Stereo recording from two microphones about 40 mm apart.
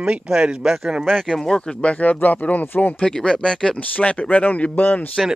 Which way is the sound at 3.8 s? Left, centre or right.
Left.